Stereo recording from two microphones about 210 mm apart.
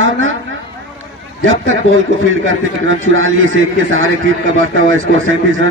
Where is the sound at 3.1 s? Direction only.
70° right (ahead or behind).